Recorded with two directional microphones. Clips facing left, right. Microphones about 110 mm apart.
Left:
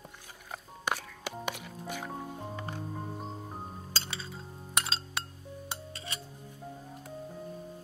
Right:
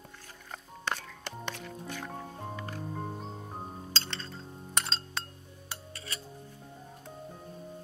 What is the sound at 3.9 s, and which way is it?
Chink, 10° left (ahead or behind).